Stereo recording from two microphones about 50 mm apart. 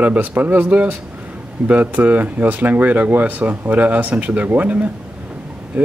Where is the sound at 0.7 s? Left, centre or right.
Right.